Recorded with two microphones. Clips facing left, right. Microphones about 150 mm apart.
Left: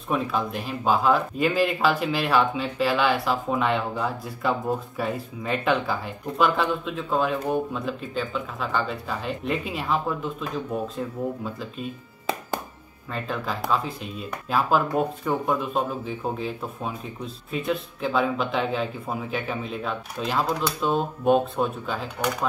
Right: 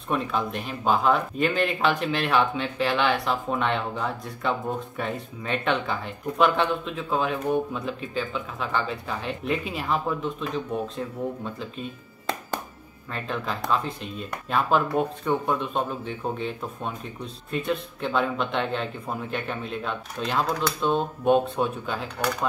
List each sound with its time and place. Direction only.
0.1 s speech: centre (ahead or behind)